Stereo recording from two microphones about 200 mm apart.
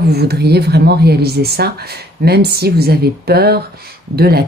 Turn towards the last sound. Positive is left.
turn(degrees=-50)  # may be behind; listen again after turning